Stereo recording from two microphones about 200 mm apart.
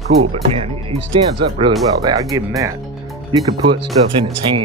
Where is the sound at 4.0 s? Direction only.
30° right (ahead or behind).